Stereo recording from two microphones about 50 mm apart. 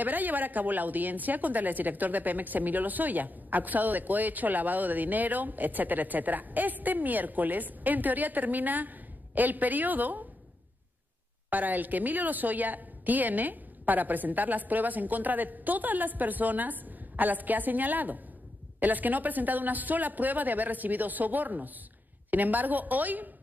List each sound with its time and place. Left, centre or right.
0.0 s a woman's voice: right
11.5 s a woman's voice: right